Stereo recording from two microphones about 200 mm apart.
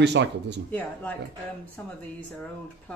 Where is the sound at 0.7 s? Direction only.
10° left (ahead or behind).